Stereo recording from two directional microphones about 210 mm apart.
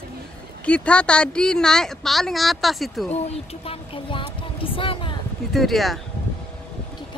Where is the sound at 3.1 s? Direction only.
30° left (ahead or behind).